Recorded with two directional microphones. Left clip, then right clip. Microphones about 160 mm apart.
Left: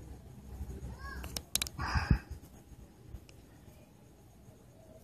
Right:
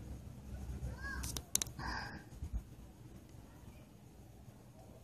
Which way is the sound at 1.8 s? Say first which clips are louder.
Left 7 dB; 25° left (ahead or behind).